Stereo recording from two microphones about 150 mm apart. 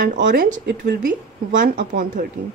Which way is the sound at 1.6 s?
60° right (ahead or behind).